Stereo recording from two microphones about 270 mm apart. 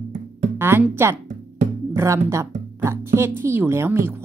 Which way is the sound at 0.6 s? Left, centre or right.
Centre.